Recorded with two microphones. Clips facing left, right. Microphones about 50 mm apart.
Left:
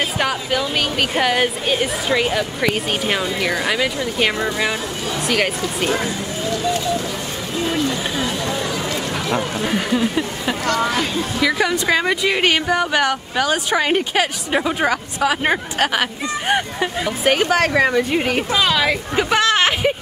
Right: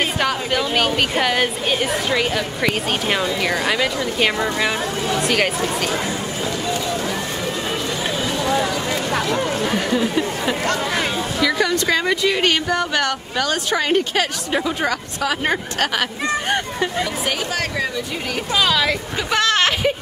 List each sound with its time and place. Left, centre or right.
0.2 s a woman's voice: centre
9.7 s a woman's voice: centre
11.3 s speech: centre
17.2 s a woman's voice: left
18.5 s speech: centre
19.3 s a sound: centre